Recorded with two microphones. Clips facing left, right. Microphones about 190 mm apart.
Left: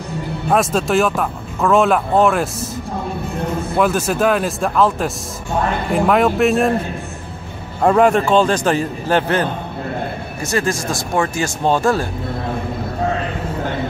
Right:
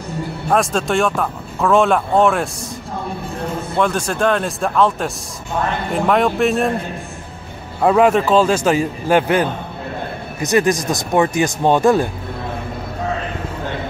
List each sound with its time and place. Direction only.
0.5 s speech: centre (ahead or behind)
3.7 s speech: 5° left (ahead or behind)
7.8 s speech: 5° right (ahead or behind)